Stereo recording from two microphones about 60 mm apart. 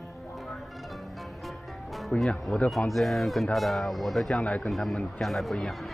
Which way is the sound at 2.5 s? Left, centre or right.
Centre.